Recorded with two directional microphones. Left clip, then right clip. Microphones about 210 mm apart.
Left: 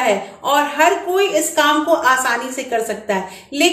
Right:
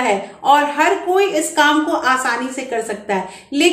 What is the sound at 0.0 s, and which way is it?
A woman's voice, 5° right (ahead or behind).